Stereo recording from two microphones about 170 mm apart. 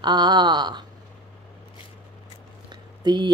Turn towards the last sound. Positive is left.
turn(degrees=-25)  # may be behind; listen again after turning